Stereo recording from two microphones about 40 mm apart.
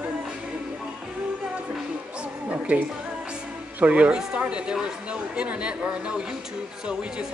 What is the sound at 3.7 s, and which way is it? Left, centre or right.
Speech, right.